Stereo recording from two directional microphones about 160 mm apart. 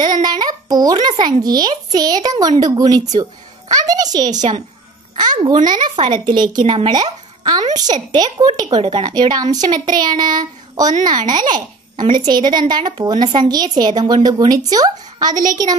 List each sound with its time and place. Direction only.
0.0 s a child's voice: 25° right (ahead or behind)